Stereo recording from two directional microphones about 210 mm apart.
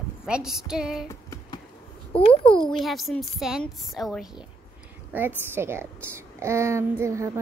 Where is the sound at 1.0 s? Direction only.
15° left (ahead or behind).